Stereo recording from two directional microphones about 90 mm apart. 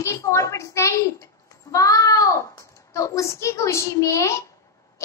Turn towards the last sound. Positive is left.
turn(degrees=35)  # may be behind; listen again after turning